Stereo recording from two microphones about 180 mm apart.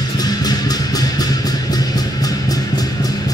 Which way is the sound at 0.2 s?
20° left (ahead or behind).